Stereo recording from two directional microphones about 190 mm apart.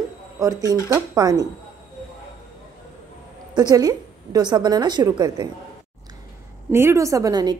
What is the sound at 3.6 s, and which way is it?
A woman's voice, 20° right (ahead or behind).